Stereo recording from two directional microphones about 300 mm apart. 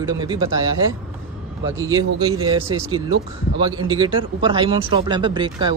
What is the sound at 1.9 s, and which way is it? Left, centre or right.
Speech, centre.